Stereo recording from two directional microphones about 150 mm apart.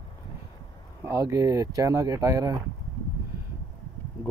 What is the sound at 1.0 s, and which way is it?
Speech, 20° right (ahead or behind).